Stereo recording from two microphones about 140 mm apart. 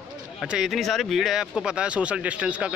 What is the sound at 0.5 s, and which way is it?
Speech, centre (ahead or behind).